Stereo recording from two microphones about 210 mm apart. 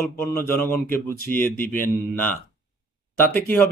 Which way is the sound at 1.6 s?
40° left (ahead or behind).